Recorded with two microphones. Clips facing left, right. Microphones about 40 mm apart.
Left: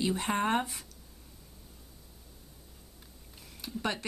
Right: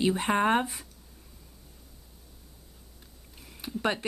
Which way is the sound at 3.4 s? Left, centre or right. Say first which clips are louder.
Right 4 dB; centre.